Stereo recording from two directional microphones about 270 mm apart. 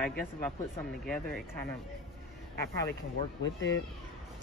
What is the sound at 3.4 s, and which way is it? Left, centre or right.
Speech, left.